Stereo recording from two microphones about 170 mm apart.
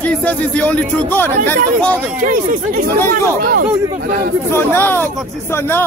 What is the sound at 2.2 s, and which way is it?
Speech, 50° right (ahead or behind).